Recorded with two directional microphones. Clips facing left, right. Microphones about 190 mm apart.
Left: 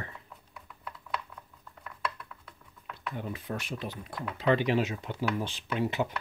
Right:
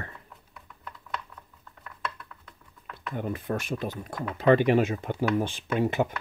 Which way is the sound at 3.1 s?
50° right (ahead or behind).